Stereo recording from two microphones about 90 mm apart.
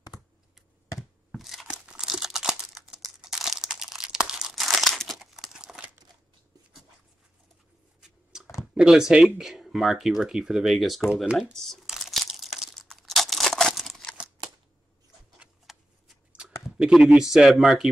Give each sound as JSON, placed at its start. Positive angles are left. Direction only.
{"t": 1.3, "sound": "tearing", "side_deg": 0}
{"t": 8.0, "sound": "a sound", "side_deg": -5}
{"t": 8.7, "sound": "speech", "side_deg": -5}
{"t": 11.8, "sound": "crumpling", "side_deg": 0}
{"t": 15.3, "sound": "tick-tock", "side_deg": -10}
{"t": 16.3, "sound": "a sound", "side_deg": -10}
{"t": 16.7, "sound": "speech", "side_deg": -10}